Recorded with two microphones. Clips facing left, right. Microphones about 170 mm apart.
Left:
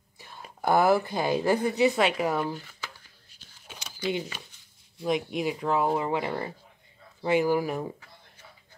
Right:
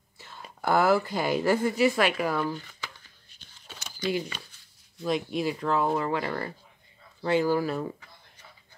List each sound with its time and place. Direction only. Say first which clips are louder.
0.2 s a woman's voice: left 2 dB; 15° left (ahead or behind)
2.5 s a sound: right 1 dB; 5° left (ahead or behind)
5.0 s speech: even; 15° left (ahead or behind)